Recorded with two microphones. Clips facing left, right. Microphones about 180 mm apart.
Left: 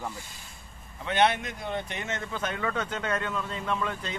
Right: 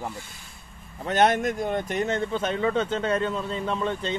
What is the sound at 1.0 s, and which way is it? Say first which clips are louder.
Speech: right 4 dB; 45° right (ahead or behind).